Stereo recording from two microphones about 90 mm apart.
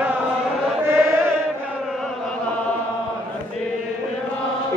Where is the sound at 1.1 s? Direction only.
30° right (ahead or behind).